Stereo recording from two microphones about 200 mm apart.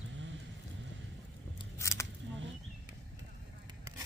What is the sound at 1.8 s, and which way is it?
Scissors, 15° left (ahead or behind).